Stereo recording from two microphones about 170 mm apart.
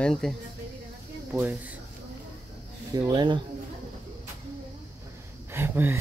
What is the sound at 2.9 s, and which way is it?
Speech, 25° right (ahead or behind).